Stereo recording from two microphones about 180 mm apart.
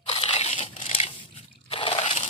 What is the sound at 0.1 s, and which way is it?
Crunch, 30° left (ahead or behind).